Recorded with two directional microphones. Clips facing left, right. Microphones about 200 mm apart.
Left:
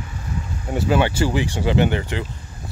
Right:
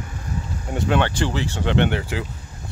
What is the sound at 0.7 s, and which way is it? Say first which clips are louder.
Speech: left 2 dB; 5° left (ahead or behind).